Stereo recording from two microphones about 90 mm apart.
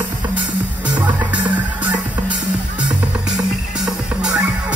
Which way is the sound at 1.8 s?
15° right (ahead or behind).